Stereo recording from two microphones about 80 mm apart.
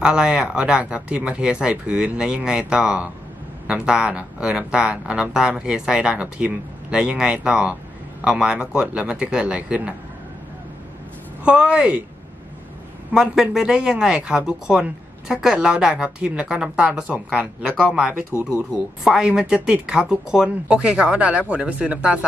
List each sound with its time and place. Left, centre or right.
0.0 s speech: centre
11.4 s speech: centre
13.1 s speech: centre